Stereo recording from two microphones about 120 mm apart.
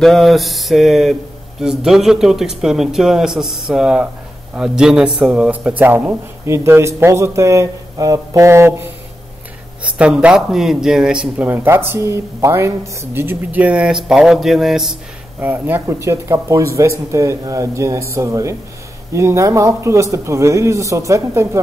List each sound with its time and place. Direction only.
0.0 s a man's voice: centre (ahead or behind); by 8.9 s 20° right (ahead or behind)
9.9 s a man's voice: 10° right (ahead or behind)
11.4 s a woman's voice: 20° right (ahead or behind); by 15.0 s 5° right (ahead or behind)
15.4 s a man's voice: 15° right (ahead or behind)